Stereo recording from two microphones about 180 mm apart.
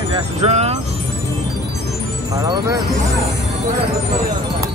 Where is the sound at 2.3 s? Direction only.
20° right (ahead or behind).